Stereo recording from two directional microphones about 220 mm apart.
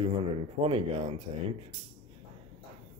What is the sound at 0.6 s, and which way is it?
Speech, 25° right (ahead or behind).